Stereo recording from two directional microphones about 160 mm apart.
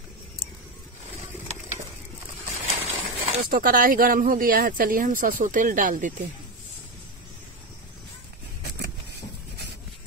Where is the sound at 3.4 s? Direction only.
65° right (ahead or behind).